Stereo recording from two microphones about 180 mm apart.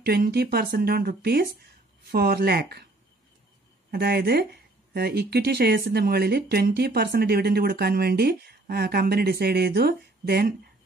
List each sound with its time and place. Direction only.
0.0 s speech: 65° right (ahead or behind)
3.9 s speech: 60° right (ahead or behind)